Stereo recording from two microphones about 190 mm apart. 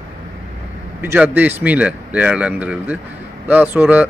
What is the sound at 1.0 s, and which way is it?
Speech, 10° right (ahead or behind).